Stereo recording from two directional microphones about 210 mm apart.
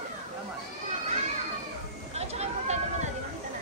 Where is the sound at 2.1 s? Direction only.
30° right (ahead or behind).